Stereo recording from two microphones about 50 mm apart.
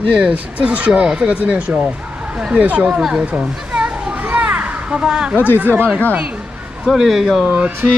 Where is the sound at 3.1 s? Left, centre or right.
Right.